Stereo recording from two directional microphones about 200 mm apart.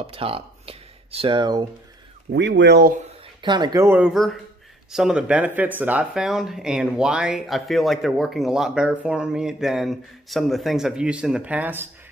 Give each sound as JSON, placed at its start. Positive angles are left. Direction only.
{"t": 0.0, "sound": "speech", "side_deg": -30}
{"t": 2.3, "sound": "speech", "side_deg": -60}
{"t": 3.4, "sound": "speech", "side_deg": -20}